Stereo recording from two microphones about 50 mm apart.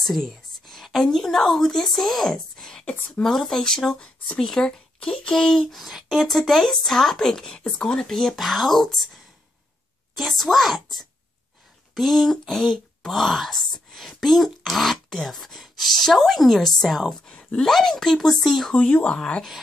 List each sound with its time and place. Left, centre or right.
0.0 s a sound: centre
1.1 s speech: centre
2.3 s a sound: centre
3.2 s speech: centre
5.8 s speech: centre
10.1 s speech: centre
17.3 s speech: centre
17.6 s speech: centre
18.9 s speech: left